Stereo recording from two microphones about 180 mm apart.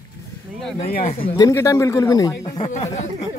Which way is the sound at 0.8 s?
35° left (ahead or behind).